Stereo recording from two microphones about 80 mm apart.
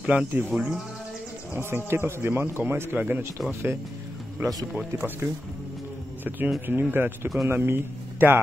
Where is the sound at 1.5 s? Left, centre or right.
Right.